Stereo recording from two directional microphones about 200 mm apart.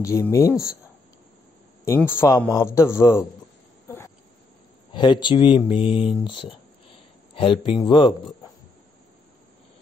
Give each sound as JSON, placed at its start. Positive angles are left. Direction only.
{"t": 0.0, "sound": "a man's voice", "side_deg": 15}
{"t": 2.0, "sound": "a man's voice", "side_deg": 10}
{"t": 4.9, "sound": "speech", "side_deg": 20}